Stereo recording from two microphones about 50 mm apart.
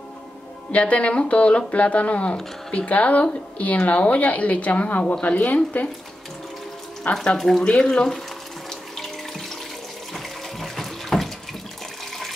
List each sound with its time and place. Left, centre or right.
0.7 s a woman's voice: left
7.3 s speech: centre
7.6 s speech: centre
8.6 s water tap: centre
10.1 s water: centre